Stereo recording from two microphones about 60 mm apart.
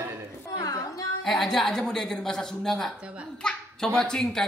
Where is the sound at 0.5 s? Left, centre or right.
Left.